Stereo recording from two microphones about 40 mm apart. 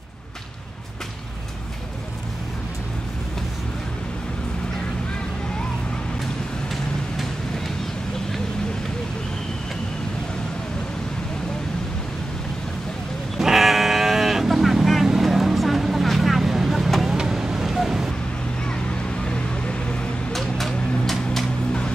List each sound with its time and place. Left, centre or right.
13.4 s sheep: centre
15.0 s vehicle: centre
19.2 s a sound: left
20.3 s vehicle: centre